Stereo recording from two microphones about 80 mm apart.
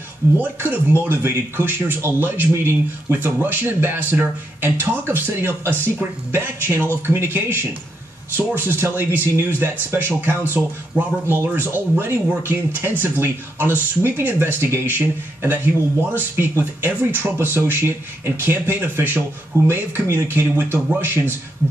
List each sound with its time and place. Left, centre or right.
0.4 s speech: right